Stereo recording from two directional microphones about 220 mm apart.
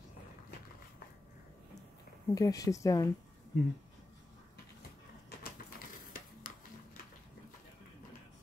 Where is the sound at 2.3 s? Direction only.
15° left (ahead or behind).